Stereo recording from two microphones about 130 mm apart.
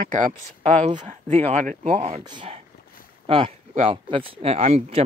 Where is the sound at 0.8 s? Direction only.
50° right (ahead or behind).